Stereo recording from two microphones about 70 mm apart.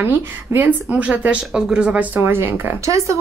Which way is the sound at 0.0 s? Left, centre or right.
Right.